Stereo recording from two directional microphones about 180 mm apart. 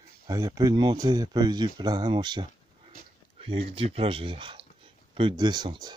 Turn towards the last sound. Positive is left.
turn(degrees=-25)  # may be behind; listen again after turning